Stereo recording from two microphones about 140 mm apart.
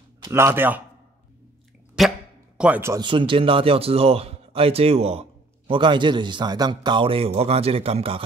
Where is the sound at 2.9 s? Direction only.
35° right (ahead or behind).